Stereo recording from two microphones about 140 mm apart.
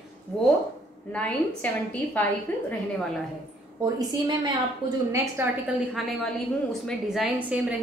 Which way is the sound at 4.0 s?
30° right (ahead or behind).